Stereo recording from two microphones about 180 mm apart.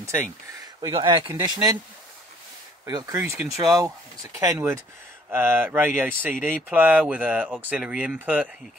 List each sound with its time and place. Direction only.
0.0 s speech: 15° right (ahead or behind)
0.7 s speech: 25° right (ahead or behind)
2.8 s speech: 15° right (ahead or behind)